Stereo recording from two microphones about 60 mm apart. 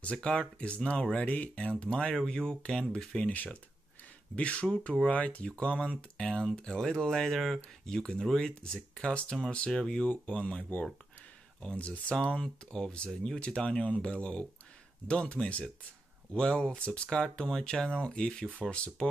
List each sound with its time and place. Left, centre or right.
0.0 s speech: centre
4.4 s speech: left
11.6 s speech: left